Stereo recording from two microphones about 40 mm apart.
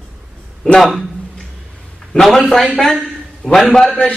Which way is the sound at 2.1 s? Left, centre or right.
Left.